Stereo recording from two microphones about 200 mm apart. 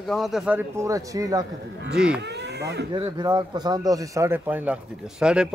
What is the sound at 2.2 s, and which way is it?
Speech, 60° right (ahead or behind).